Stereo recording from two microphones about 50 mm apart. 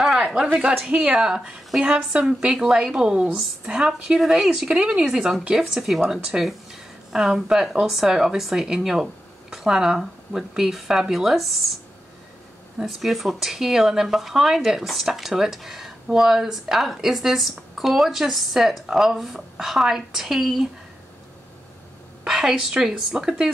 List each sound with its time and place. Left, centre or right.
0.0 s a sound: centre
0.8 s speech: centre
12.8 s speech: centre
22.2 s a woman's voice: centre
23.1 s speech: centre